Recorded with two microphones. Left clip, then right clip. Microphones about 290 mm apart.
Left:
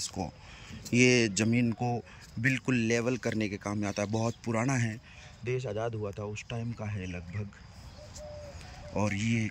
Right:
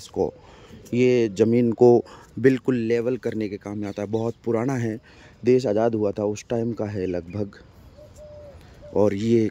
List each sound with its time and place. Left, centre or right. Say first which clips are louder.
0.0 s speech: right 12 dB; centre
5.4 s speech: right 14 dB; right
8.9 s speech: right 12 dB; centre